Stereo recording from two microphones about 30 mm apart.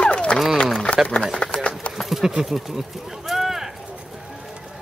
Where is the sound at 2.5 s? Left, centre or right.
Centre.